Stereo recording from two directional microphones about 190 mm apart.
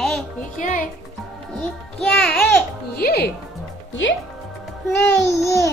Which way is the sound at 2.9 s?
55° left (ahead or behind).